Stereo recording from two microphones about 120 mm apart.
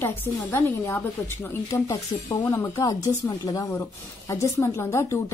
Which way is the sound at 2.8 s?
30° left (ahead or behind).